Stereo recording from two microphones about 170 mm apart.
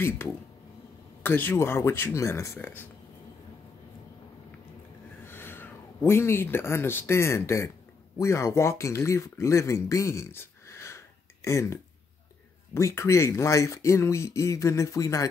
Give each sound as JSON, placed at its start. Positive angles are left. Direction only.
{"t": 1.2, "sound": "speech", "side_deg": 10}
{"t": 5.2, "sound": "speech", "side_deg": 10}